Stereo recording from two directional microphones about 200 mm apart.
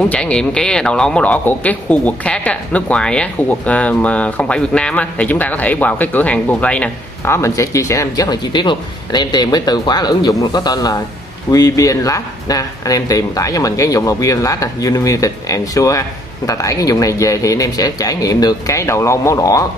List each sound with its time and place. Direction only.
0.1 s speech: 5° left (ahead or behind)